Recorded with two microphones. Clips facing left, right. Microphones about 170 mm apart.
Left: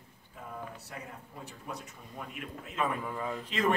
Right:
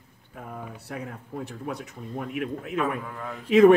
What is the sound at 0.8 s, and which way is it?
Speech, 65° right (ahead or behind).